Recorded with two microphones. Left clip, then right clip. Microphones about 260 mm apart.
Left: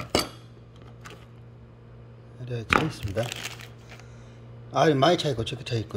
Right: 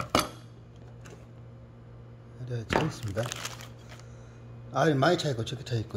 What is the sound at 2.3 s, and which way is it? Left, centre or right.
Speech, centre.